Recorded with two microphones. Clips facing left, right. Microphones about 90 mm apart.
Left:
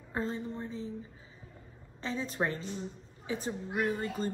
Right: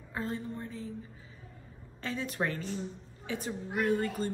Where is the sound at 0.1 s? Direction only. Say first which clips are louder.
Left 1 dB; 30° left (ahead or behind).